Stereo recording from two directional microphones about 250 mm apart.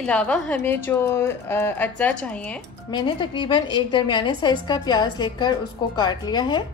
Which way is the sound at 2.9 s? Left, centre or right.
Centre.